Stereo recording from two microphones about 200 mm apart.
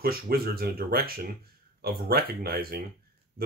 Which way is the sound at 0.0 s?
50° right (ahead or behind).